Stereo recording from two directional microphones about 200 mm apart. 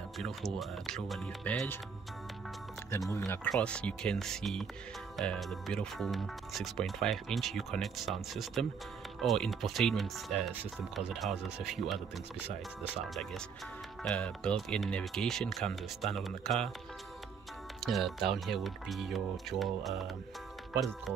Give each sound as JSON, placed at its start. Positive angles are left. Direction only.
{"t": 0.2, "sound": "speech", "side_deg": 0}
{"t": 3.1, "sound": "speech", "side_deg": 15}
{"t": 3.4, "sound": "speech", "side_deg": 5}
{"t": 13.1, "sound": "speech", "side_deg": 0}
{"t": 17.7, "sound": "speech", "side_deg": 0}